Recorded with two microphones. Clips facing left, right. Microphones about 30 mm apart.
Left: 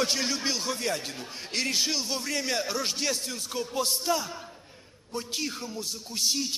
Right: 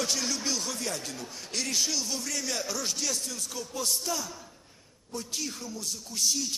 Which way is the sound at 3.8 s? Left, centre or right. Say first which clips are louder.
Left 1 dB; left.